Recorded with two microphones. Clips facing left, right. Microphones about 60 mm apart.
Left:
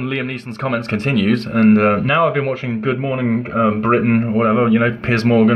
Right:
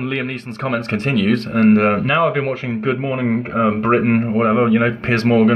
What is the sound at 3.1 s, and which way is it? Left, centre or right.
A man's voice, centre.